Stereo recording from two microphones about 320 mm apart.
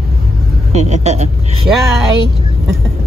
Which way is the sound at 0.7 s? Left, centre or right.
Right.